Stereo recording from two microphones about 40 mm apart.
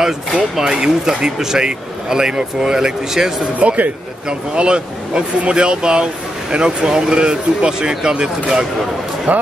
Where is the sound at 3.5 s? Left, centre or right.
Right.